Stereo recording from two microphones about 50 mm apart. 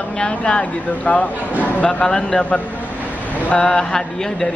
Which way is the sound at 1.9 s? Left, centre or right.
Centre.